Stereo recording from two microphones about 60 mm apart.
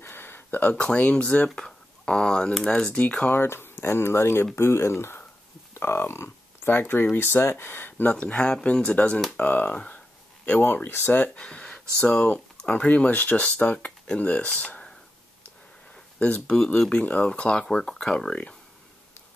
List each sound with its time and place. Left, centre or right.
0.0 s a sound: left
0.7 s speech: centre
3.3 s speech: left
8.1 s speech: centre; by 11.2 s left
11.2 s speech: centre
16.2 s speech: left
16.5 s speech: centre
16.9 s speech: left